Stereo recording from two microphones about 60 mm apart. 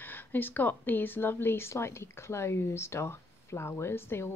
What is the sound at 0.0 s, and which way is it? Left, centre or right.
A woman's voice, left.